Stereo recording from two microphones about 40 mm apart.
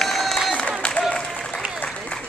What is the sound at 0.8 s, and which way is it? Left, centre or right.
Applause, left.